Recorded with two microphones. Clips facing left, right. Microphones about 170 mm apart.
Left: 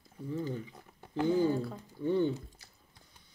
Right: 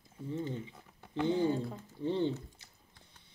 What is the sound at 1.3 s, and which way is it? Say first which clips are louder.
Speech: left 2 dB; 25° right (ahead or behind).